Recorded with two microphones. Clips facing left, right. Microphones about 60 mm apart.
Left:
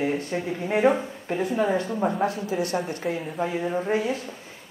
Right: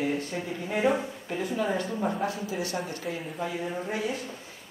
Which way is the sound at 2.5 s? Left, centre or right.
Left.